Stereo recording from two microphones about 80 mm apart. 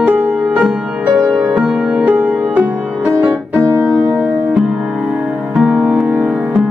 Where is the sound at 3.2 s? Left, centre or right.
Right.